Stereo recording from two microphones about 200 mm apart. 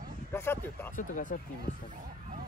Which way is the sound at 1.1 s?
40° left (ahead or behind).